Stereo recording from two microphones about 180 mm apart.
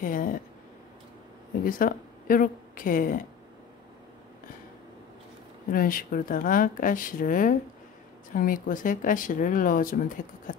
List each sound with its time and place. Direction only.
0.0 s speech: 50° left (ahead or behind)
1.5 s a woman's voice: 50° left (ahead or behind)
5.7 s speech: 50° left (ahead or behind)